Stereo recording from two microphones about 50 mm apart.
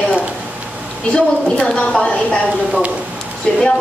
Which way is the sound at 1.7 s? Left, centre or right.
Centre.